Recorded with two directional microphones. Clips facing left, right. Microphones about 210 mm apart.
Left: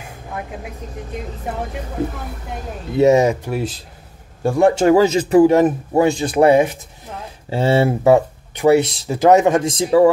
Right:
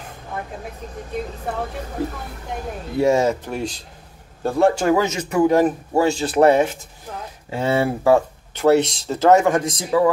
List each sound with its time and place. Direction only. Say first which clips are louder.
3.0 s a man's voice: left 4 dB; 20° left (ahead or behind)
7.4 s speech: left 4 dB; 30° left (ahead or behind)